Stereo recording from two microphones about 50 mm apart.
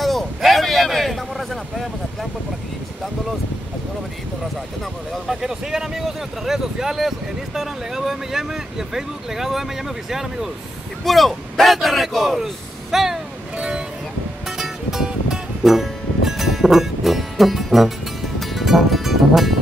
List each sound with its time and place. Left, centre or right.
0.0 s a sound: centre
5.1 s speech: centre
12.9 s vehicle: centre
13.6 s vehicle: centre
14.6 s music: centre